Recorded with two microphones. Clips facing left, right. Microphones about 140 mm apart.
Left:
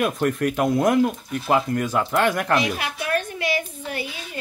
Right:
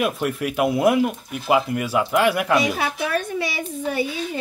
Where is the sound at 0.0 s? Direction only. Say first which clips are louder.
Left 1 dB; 5° right (ahead or behind).